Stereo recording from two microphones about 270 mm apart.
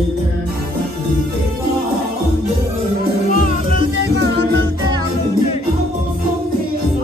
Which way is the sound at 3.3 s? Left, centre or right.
Left.